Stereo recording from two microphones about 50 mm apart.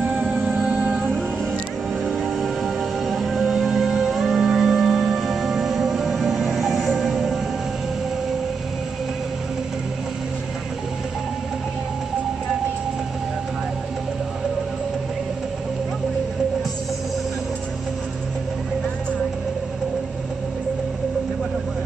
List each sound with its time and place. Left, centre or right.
0.1 s music: right
2.2 s music: centre